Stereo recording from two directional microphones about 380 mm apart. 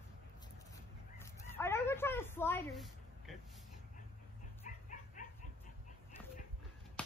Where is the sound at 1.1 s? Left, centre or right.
Centre.